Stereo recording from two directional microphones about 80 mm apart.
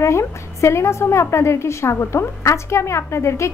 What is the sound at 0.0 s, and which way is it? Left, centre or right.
A woman's voice, left.